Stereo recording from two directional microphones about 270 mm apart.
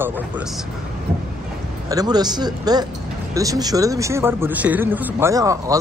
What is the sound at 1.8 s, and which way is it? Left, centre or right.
Speech, centre.